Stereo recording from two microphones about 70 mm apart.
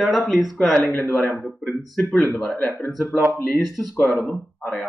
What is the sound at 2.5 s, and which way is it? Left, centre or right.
Speech, left.